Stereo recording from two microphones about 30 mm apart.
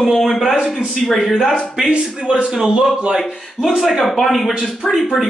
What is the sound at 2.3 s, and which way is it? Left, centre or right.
Speech, right.